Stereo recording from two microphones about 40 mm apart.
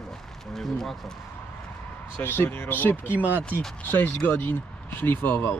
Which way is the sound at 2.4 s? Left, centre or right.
Left.